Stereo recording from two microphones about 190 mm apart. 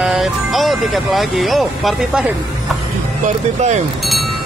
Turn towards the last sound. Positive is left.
turn(degrees=-35)  # may be behind; listen again after turning